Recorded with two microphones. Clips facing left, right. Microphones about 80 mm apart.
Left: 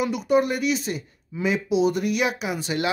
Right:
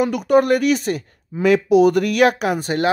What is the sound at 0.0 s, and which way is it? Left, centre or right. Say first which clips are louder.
Speech: right 5 dB; right.